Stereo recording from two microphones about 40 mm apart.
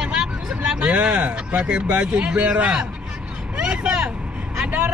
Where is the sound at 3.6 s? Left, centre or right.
Right.